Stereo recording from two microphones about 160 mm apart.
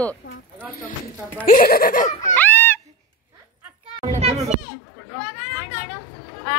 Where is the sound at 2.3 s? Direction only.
10° left (ahead or behind).